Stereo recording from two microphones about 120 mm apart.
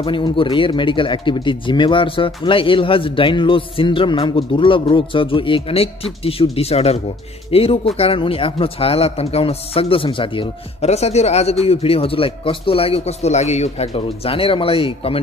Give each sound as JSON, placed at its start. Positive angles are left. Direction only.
{"t": 0.0, "sound": "speech", "side_deg": 45}
{"t": 10.8, "sound": "a man's voice", "side_deg": 60}